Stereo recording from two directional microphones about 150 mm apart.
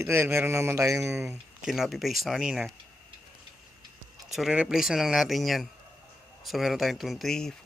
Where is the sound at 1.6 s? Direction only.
Centre (ahead or behind).